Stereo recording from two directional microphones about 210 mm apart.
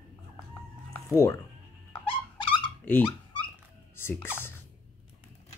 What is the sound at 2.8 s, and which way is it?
Dog, 10° left (ahead or behind).